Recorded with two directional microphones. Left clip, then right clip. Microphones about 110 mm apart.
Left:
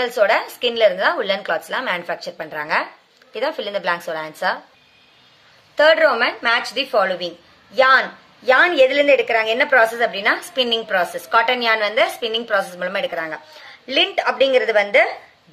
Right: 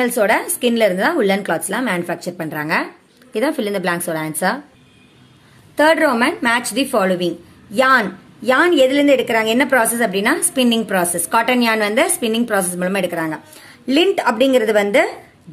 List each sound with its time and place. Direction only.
0.0 s a woman's voice: 30° right (ahead or behind)
1.8 s a woman's voice: 20° right (ahead or behind)
5.8 s a woman's voice: 25° right (ahead or behind)